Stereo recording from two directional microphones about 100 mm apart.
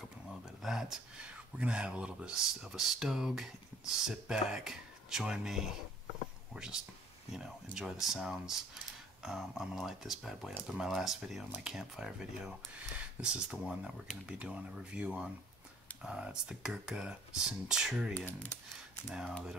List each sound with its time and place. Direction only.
0.6 s speech: 5° right (ahead or behind)
18.1 s speech: 20° left (ahead or behind)
19.0 s speech: centre (ahead or behind)